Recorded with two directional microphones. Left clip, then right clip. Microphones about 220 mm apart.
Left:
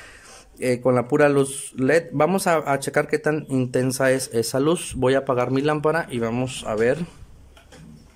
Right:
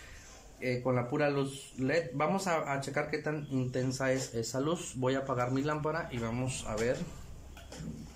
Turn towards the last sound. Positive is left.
turn(degrees=40)  # may be behind; listen again after turning